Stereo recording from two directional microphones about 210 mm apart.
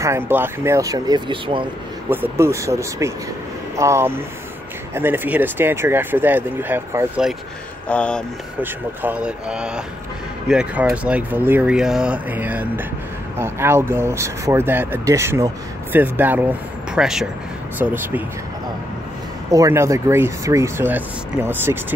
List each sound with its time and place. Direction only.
0.0 s speech: 10° right (ahead or behind)
2.0 s speech: 10° right (ahead or behind)
7.9 s mantra: 5° left (ahead or behind)
9.0 s mantra: 5° right (ahead or behind)
10.5 s speech: 5° right (ahead or behind)
16.9 s mantra: centre (ahead or behind)
17.7 s speech: 10° right (ahead or behind)
19.5 s speech: 15° right (ahead or behind)